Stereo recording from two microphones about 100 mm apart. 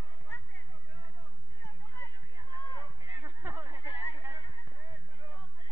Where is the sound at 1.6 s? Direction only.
20° left (ahead or behind).